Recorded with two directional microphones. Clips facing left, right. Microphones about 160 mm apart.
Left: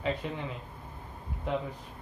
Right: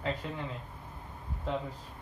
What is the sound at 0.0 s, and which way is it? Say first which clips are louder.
Speech: left 3 dB; 15° left (ahead or behind).